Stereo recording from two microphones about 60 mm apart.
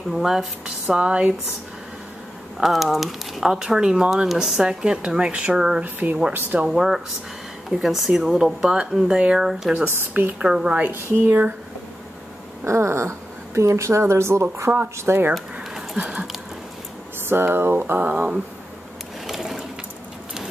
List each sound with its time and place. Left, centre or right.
0.1 s speech: centre
0.8 s speech: centre
2.6 s speech: centre; by 6.7 s right
6.7 s speech: centre
10.8 s speech: right
12.6 s a woman's voice: right
15.3 s a sound: centre
16.0 s speech: right
17.3 s speech: right
17.9 s speech: right
19.2 s sewing machine: centre